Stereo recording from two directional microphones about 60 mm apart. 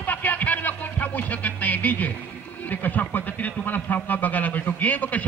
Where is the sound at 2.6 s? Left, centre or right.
Left.